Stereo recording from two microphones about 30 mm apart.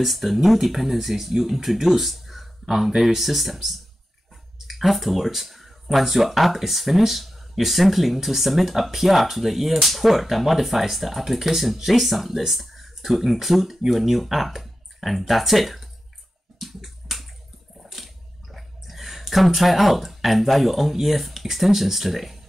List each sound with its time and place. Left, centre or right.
0.0 s speech: centre
16.5 s a sound: centre
21.3 s speech: centre